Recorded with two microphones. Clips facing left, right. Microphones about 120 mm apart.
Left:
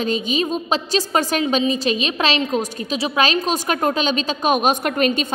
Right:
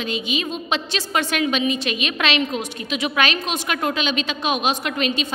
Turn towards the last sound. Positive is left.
turn(degrees=45)  # may be behind; listen again after turning